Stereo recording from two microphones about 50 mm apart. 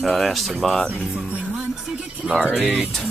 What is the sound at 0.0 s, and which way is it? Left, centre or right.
Speech, centre.